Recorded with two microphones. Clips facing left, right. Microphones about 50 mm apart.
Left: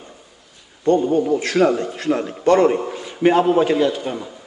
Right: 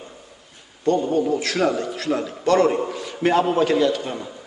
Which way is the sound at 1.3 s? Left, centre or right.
Left.